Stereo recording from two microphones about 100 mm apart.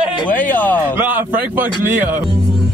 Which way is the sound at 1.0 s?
20° right (ahead or behind).